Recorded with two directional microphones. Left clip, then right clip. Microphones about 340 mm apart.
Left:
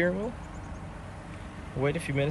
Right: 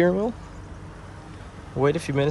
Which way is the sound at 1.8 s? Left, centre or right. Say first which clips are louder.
Right 7 dB; centre.